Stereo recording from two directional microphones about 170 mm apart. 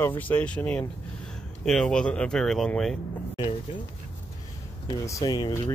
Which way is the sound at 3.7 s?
30° left (ahead or behind).